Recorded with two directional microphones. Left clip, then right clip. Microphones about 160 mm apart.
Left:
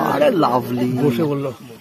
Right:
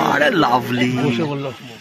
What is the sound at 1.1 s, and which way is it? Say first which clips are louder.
Speech: left 2 dB; 45° left (ahead or behind).